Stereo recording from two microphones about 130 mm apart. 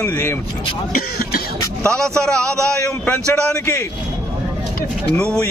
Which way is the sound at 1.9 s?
5° left (ahead or behind).